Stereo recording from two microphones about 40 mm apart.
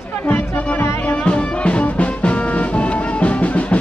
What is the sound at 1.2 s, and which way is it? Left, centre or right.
Music, left.